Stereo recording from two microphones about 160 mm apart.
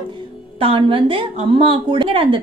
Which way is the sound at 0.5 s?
35° right (ahead or behind).